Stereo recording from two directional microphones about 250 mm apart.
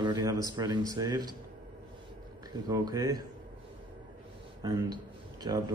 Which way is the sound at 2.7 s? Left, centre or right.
Centre.